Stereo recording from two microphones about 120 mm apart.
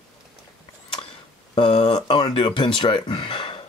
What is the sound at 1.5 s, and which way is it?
Speech, 50° left (ahead or behind).